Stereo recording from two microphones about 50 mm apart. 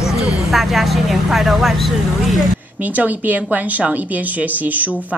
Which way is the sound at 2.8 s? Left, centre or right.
Right.